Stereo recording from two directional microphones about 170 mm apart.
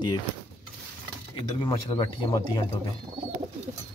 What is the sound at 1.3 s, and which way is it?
Speech, 30° left (ahead or behind).